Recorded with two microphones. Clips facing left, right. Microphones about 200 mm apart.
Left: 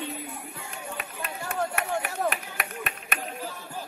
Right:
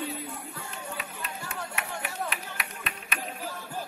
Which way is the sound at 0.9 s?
50° left (ahead or behind).